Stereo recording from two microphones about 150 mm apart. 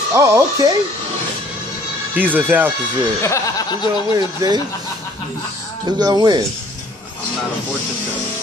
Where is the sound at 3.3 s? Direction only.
30° left (ahead or behind).